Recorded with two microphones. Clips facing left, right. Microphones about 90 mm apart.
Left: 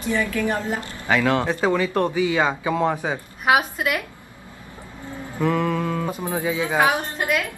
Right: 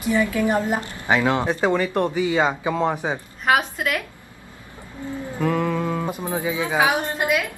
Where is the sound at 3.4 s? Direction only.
5° left (ahead or behind).